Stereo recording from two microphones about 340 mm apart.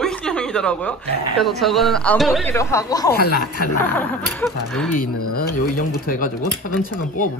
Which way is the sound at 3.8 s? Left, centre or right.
Centre.